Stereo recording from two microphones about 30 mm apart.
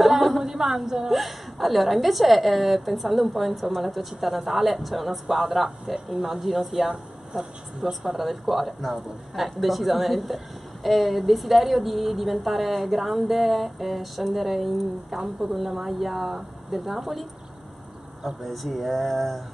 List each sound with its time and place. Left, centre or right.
0.0 s a sound: centre
0.5 s speech: centre
7.3 s a woman's voice: right
7.8 s speech: centre